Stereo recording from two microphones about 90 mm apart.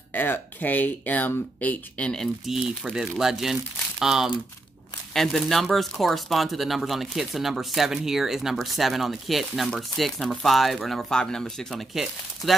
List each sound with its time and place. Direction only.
0.1 s speech: 20° left (ahead or behind)
2.4 s speech: 5° right (ahead or behind)